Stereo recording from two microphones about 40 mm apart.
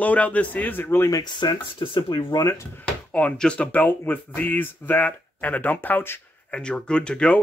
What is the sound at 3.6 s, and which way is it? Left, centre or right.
Speech, left.